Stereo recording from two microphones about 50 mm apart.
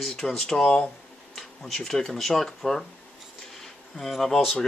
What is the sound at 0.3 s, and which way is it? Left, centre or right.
Speech, centre.